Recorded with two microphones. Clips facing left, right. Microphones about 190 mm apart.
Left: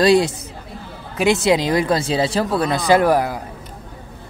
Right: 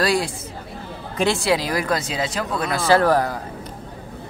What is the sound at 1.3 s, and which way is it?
A man's voice, 20° left (ahead or behind).